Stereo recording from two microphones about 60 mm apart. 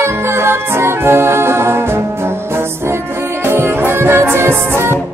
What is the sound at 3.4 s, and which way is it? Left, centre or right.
Music, right.